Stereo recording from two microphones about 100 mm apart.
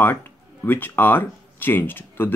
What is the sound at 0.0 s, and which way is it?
Speech, 20° left (ahead or behind).